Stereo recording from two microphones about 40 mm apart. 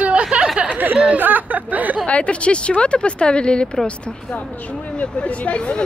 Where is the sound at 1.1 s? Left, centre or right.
Right.